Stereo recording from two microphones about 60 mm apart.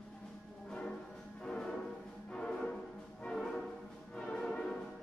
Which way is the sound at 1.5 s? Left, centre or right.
Centre.